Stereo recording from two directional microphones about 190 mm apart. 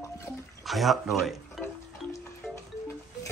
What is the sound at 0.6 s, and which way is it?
Speech, centre (ahead or behind).